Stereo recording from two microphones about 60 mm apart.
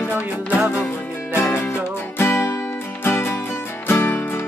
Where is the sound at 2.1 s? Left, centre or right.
Left.